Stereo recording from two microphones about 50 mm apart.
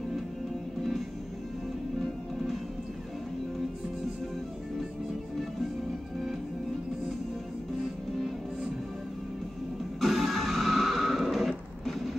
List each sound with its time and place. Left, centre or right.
9.9 s music: centre